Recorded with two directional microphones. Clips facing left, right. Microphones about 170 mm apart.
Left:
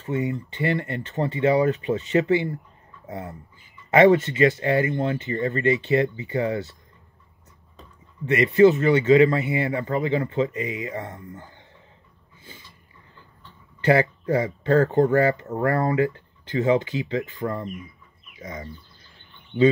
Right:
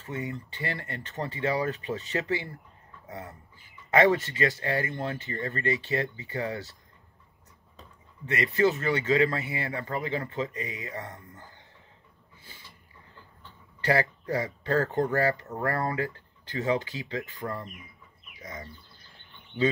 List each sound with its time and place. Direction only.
0.0 s speech: 20° left (ahead or behind)
8.3 s speech: 20° left (ahead or behind)
13.7 s speech: 20° left (ahead or behind)
18.4 s speech: 20° left (ahead or behind)